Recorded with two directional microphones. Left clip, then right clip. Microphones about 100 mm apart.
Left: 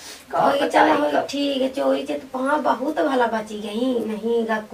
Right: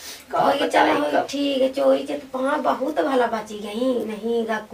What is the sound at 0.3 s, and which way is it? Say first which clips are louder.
A woman's voice: left 1 dB; 5° right (ahead or behind).